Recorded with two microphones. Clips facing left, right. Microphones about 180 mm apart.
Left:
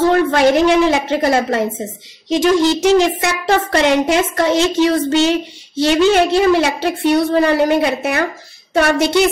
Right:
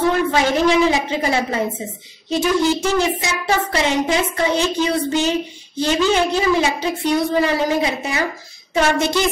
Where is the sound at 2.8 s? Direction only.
80° left.